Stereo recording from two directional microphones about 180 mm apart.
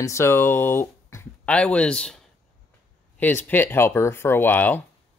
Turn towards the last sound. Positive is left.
turn(degrees=10)  # may be behind; listen again after turning